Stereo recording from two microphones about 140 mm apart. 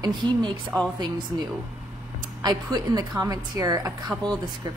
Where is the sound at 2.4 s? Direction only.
30° right (ahead or behind).